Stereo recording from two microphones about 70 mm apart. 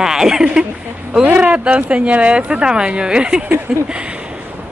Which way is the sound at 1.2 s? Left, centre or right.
Right.